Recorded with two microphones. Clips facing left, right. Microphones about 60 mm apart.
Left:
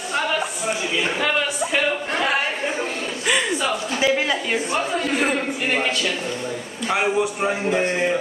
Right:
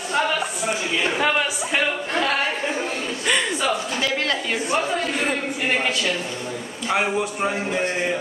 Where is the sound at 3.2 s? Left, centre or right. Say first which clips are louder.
Left 1 dB; centre.